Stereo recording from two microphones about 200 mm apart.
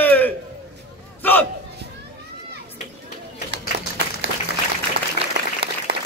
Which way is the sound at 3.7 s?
60° right (ahead or behind).